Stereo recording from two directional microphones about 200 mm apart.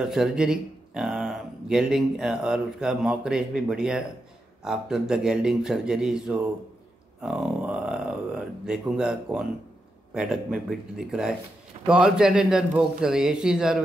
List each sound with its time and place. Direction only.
0.0 s a man's voice: 5° right (ahead or behind)
7.2 s a sound: 5° right (ahead or behind)
10.1 s a man's voice: 5° right (ahead or behind)